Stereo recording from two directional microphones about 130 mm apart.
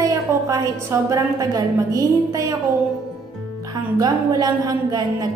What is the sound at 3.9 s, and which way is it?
A woman's voice, 30° right (ahead or behind).